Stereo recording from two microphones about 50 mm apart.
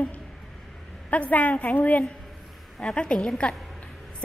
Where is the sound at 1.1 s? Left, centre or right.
Left.